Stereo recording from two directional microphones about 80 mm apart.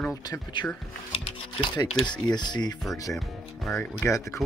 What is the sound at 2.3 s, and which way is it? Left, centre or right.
Speech, left.